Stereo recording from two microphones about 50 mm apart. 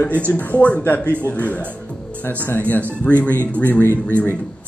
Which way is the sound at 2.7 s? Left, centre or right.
Left.